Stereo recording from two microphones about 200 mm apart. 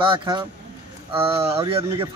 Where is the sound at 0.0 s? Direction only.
25° right (ahead or behind).